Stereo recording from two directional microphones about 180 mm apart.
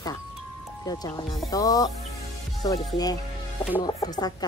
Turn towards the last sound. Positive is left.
turn(degrees=20)  # may be behind; listen again after turning